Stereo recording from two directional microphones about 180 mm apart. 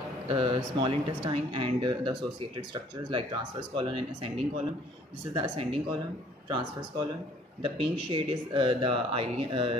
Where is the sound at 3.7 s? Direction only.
30° right (ahead or behind).